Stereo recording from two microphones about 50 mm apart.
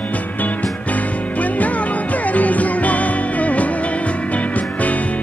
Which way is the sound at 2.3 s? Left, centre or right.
Left.